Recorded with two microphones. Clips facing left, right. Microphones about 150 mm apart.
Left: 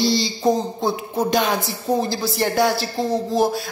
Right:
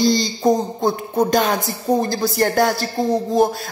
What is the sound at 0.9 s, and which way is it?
A man's voice, centre (ahead or behind).